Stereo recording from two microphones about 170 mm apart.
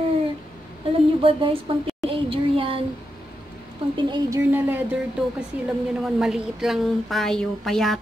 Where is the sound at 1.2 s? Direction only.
30° right (ahead or behind).